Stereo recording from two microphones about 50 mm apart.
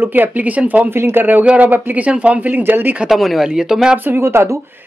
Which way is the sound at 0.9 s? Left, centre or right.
Right.